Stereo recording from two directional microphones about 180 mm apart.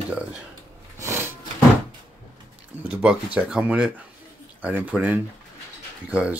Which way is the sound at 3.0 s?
5° right (ahead or behind).